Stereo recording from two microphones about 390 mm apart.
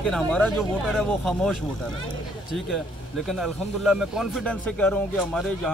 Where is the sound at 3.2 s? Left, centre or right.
Centre.